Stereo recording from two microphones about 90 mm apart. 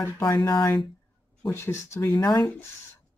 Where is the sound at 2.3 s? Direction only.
Centre (ahead or behind).